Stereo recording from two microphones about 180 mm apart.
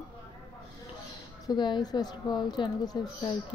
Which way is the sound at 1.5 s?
25° left (ahead or behind).